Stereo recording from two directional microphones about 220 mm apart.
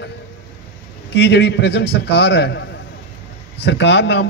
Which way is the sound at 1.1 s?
50° left (ahead or behind).